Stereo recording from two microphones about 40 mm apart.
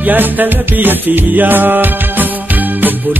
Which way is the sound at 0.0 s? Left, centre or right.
Right.